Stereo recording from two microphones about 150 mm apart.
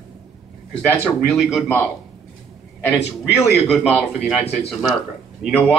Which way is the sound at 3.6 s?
Centre (ahead or behind).